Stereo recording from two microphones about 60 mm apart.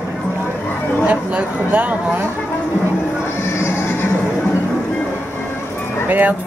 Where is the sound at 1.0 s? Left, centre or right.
Right.